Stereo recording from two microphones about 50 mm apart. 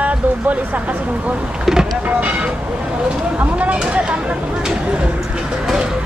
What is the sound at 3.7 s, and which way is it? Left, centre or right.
Speech, right.